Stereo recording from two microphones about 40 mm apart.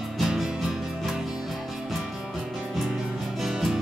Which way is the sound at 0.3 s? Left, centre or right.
Centre.